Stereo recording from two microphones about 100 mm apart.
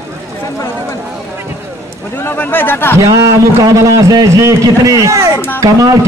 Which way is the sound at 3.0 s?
30° right (ahead or behind).